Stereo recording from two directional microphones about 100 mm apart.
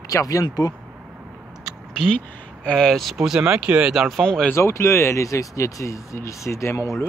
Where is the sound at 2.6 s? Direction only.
5° left (ahead or behind).